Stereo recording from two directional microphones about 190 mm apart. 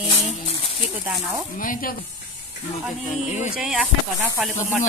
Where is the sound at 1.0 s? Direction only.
5° right (ahead or behind).